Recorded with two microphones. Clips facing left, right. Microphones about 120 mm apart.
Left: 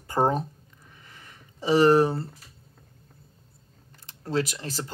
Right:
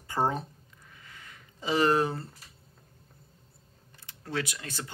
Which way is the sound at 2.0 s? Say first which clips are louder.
Left 6 dB; 30° left (ahead or behind).